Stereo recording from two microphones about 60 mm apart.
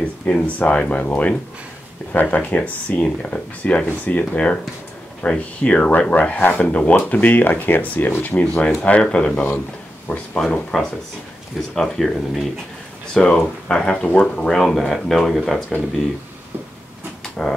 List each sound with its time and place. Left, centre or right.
0.0 s speech: left
10.4 s speech: centre
17.2 s dog: centre